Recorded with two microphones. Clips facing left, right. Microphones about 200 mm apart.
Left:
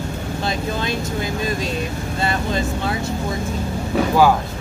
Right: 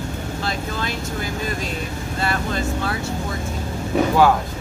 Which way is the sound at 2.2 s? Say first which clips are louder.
Left 2 dB; 20° left (ahead or behind).